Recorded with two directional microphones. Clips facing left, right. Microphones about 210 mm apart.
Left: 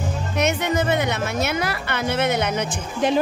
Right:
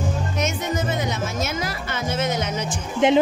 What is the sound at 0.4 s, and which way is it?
Speech, 65° left (ahead or behind).